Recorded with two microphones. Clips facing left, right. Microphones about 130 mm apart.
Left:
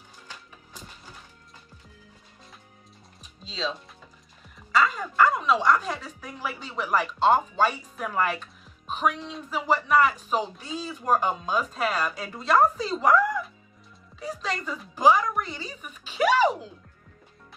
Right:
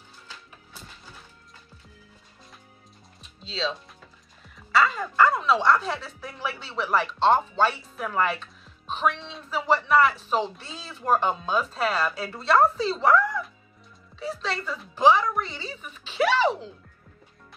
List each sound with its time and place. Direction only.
4.7 s a woman's voice: 10° left (ahead or behind)